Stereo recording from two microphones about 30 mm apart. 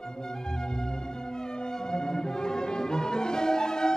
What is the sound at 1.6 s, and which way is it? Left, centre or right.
Music, left.